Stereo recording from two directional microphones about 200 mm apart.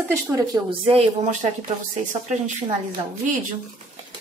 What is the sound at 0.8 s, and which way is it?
Speech, 35° right (ahead or behind).